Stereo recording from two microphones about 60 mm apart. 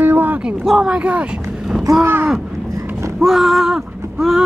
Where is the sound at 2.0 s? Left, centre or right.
Right.